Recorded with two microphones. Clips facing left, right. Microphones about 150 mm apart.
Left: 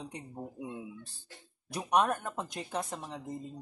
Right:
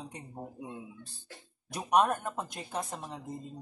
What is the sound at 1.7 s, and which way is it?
Speech, 15° right (ahead or behind).